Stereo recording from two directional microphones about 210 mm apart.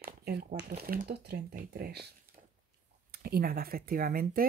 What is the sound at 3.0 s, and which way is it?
Speech, 50° right (ahead or behind).